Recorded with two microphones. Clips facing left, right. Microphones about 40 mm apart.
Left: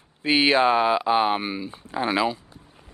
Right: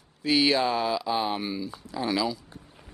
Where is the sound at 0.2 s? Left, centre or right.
Left.